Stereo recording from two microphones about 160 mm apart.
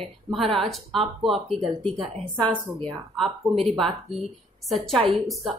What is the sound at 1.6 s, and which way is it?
Speech, 35° right (ahead or behind).